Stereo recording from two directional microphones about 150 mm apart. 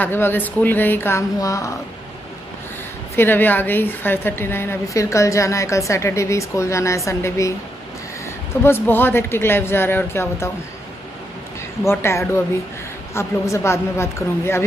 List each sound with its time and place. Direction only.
0.0 s speech: 15° left (ahead or behind)
3.2 s a woman's voice: 15° left (ahead or behind)
8.6 s speech: 15° left (ahead or behind)
11.8 s speech: 15° left (ahead or behind)